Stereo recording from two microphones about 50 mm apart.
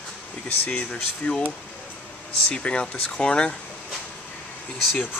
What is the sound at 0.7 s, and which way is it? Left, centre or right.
Speech, left.